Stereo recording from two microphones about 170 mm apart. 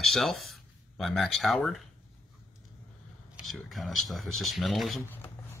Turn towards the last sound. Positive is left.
turn(degrees=0)  # may be behind; listen again after turning